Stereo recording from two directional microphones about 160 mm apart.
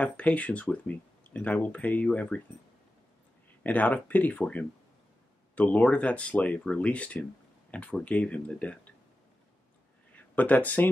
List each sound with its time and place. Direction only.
0.0 s speech: 10° left (ahead or behind)
3.6 s speech: 10° left (ahead or behind)
10.3 s speech: 10° left (ahead or behind)